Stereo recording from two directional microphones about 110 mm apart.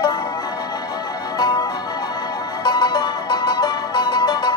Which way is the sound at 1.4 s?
40° left (ahead or behind).